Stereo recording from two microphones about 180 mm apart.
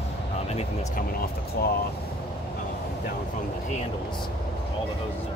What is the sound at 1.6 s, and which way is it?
Speech, 60° left (ahead or behind).